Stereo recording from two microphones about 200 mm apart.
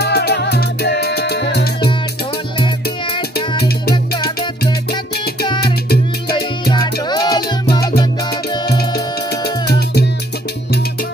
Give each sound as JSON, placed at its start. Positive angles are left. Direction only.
{"t": 0.0, "sound": "music", "side_deg": 55}
{"t": 3.9, "sound": "music", "side_deg": 20}
{"t": 6.7, "sound": "music", "side_deg": 20}